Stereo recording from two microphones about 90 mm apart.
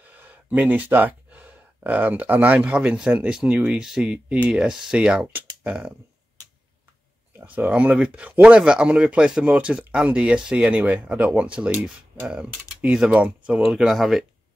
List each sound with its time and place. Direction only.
0.0 s speech: 20° right (ahead or behind)
7.3 s speech: 20° right (ahead or behind); by 14.2 s centre (ahead or behind)